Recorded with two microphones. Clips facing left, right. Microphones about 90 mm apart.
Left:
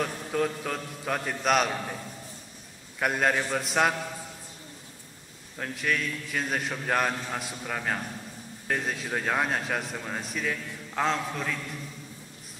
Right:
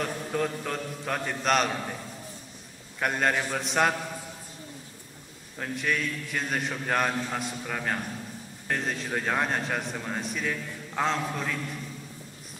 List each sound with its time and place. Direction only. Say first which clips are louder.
0.0 s a man's voice: left 1 dB; centre (ahead or behind)
3.0 s a man's voice: left 1 dB; 5° left (ahead or behind)
5.6 s a man's voice: even; centre (ahead or behind)